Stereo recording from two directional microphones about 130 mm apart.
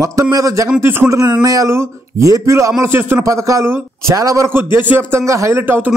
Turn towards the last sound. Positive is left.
turn(degrees=-15)  # may be behind; listen again after turning